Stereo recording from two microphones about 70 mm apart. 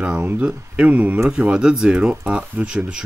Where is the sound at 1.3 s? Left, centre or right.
Centre.